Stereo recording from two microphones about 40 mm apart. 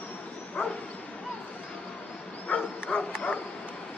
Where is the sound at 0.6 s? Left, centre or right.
Left.